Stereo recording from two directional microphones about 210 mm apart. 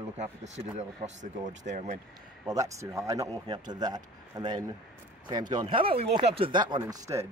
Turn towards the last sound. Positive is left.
turn(degrees=-15)  # may be behind; listen again after turning